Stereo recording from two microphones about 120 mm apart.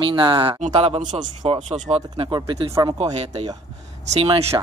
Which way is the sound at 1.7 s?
75° right (ahead or behind).